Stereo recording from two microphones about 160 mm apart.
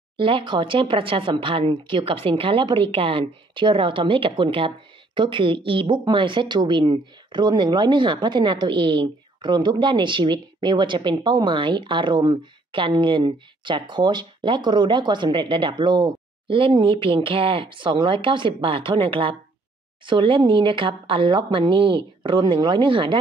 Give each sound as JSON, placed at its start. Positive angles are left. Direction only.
{"t": 0.2, "sound": "a woman's voice", "side_deg": -30}